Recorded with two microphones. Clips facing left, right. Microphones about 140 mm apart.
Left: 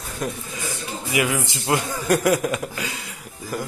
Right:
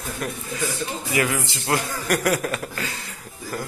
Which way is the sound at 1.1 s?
15° left (ahead or behind).